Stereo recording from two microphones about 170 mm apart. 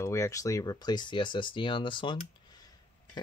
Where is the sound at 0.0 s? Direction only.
15° left (ahead or behind).